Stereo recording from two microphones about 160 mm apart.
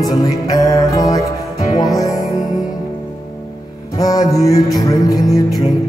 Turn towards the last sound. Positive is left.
turn(degrees=20)  # may be behind; listen again after turning